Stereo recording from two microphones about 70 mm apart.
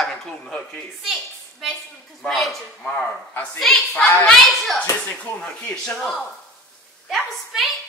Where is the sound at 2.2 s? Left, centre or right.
Centre.